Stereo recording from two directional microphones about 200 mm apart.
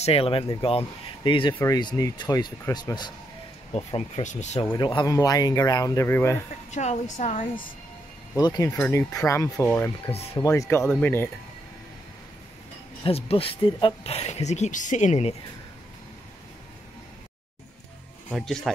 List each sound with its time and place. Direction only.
0.0 s speech: 30° left (ahead or behind)
3.7 s speech: 30° left (ahead or behind)
4.7 s speech: 20° left (ahead or behind)
6.7 s speech: 35° left (ahead or behind)
8.4 s speech: 20° left (ahead or behind)
8.7 s speech: 5° left (ahead or behind)
13.0 s speech: 30° left (ahead or behind)
18.3 s speech: centre (ahead or behind)